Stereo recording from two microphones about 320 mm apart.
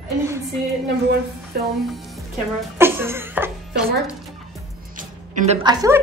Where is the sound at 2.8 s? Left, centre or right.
Centre.